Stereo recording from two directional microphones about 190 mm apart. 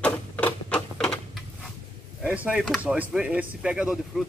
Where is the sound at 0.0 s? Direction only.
5° left (ahead or behind).